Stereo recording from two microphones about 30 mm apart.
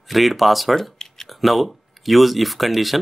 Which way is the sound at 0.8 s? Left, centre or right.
Centre.